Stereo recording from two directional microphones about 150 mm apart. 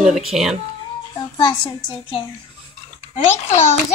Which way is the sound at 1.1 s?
30° left (ahead or behind).